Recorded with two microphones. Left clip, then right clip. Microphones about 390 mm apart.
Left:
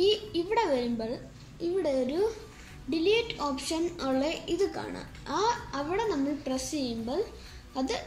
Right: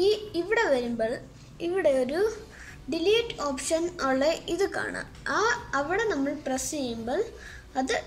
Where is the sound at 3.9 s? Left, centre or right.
Right.